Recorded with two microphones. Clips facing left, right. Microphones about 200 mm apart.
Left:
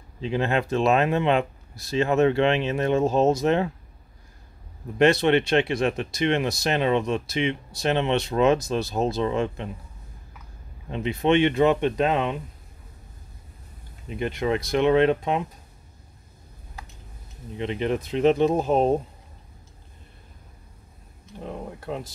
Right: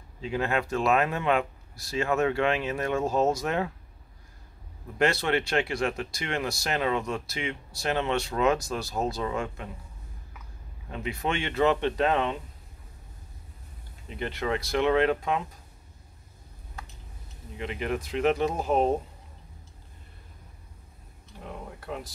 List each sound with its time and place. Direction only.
0.2 s speech: 25° left (ahead or behind)
4.9 s speech: 20° left (ahead or behind)
10.9 s speech: 20° left (ahead or behind)
14.0 s speech: 15° left (ahead or behind)
17.6 s speech: 25° left (ahead or behind)
21.7 s speech: 25° left (ahead or behind)